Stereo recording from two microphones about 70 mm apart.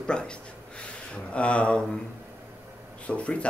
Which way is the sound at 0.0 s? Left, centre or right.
Centre.